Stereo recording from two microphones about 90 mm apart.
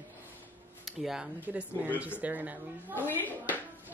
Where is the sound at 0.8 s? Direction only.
5° right (ahead or behind).